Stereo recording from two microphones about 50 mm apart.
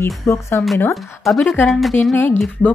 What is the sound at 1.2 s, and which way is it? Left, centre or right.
Speech, centre.